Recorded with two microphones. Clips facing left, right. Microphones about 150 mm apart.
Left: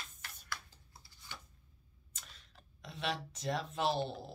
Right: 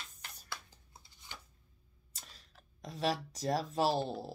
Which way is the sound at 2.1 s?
35° right (ahead or behind).